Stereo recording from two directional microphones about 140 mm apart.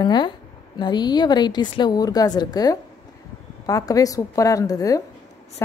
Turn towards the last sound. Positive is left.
turn(degrees=25)  # may be behind; listen again after turning